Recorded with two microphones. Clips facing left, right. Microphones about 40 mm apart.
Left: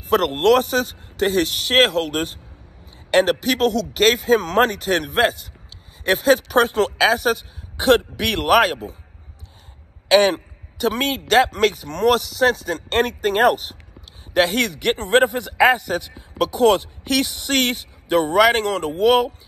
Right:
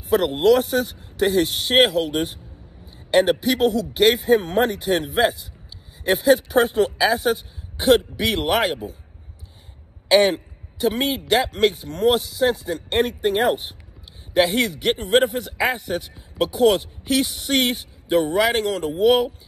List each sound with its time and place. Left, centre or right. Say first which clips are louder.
0.0 s a man's voice: left 1 dB; left
10.0 s a man's voice: left 1 dB; left
11.5 s speech: even; left
14.5 s a man's voice: left 1 dB; left